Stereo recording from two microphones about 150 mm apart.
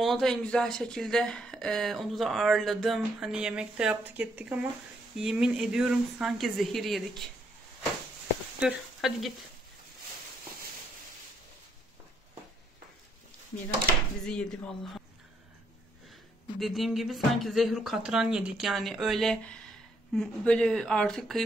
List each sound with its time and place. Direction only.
0.0 s speech: centre (ahead or behind)
8.5 s speech: 5° right (ahead or behind)
14.2 s speech: 5° left (ahead or behind)
16.5 s speech: centre (ahead or behind)